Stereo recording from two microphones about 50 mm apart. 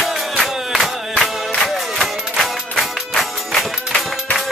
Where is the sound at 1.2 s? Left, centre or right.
Centre.